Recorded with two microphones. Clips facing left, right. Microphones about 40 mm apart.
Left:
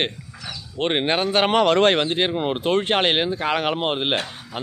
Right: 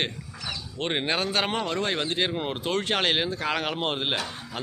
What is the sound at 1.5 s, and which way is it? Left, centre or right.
Speech, left.